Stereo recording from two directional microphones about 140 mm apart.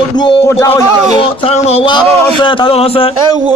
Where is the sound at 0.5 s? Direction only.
20° left (ahead or behind).